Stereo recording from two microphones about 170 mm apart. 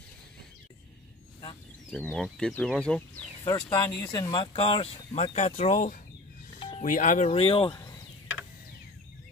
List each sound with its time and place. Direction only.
1.9 s speech: 5° left (ahead or behind)
3.4 s speech: 20° left (ahead or behind); by 7.2 s 50° left (ahead or behind)
7.2 s speech: 35° left (ahead or behind)